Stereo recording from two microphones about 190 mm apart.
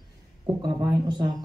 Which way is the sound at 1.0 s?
20° right (ahead or behind).